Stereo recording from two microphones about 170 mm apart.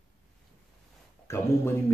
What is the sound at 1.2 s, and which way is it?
Speech, 15° left (ahead or behind).